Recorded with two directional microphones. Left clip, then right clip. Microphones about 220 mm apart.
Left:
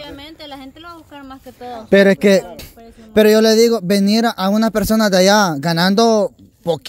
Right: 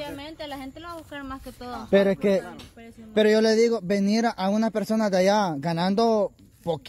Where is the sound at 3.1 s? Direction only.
35° left (ahead or behind).